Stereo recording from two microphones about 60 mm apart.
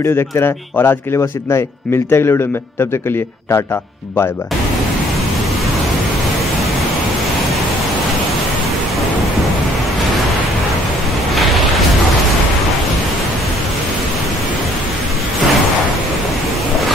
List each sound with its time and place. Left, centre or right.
0.0 s a man's voice: left
0.8 s speech: left
2.0 s a man's voice: left
11.3 s a sound: centre